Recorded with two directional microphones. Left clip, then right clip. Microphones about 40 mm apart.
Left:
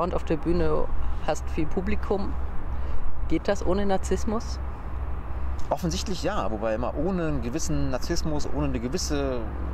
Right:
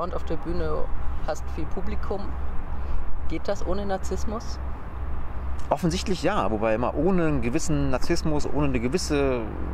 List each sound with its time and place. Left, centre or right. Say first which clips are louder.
0.0 s speech: left 4 dB; left
5.7 s speech: right 3 dB; right